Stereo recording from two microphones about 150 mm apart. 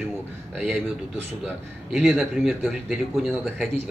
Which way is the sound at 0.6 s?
5° right (ahead or behind).